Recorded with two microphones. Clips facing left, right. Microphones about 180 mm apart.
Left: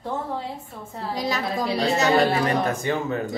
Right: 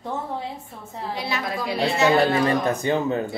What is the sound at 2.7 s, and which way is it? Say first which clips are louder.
Speech: right 2 dB; 20° right (ahead or behind).